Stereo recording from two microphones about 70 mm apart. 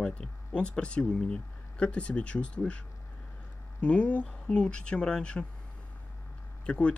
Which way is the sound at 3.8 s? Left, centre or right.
Centre.